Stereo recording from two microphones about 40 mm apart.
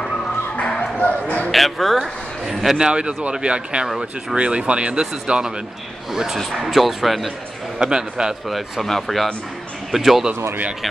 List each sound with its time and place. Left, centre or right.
0.7 s bow-wow: left
1.5 s speech: centre
2.0 s a man's voice: centre
2.9 s speech: right
3.8 s speech: centre
4.4 s speech: right
6.1 s speech: centre
7.8 s speech: centre
8.5 s speech: centre